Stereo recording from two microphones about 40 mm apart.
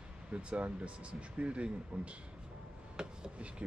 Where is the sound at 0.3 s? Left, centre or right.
Right.